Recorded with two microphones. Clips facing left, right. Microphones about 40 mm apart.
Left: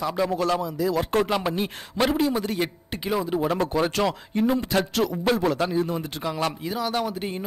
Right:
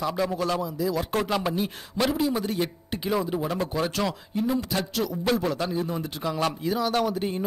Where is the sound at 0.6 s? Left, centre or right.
Left.